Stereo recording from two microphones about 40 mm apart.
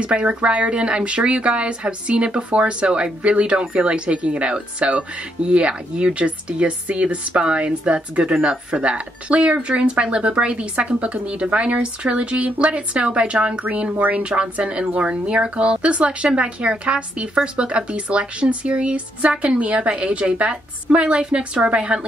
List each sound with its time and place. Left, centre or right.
0.0 s a woman's voice: right